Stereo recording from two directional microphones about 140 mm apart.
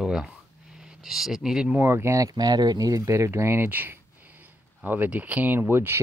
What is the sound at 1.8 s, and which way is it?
Speech, 20° right (ahead or behind).